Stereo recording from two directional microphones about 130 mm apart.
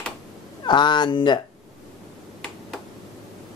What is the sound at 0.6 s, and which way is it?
Speech, 35° left (ahead or behind).